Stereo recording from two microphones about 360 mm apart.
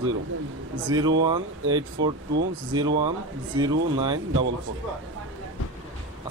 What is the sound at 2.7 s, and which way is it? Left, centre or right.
A man's voice, centre.